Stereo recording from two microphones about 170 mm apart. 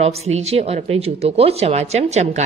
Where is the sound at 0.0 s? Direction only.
40° right (ahead or behind).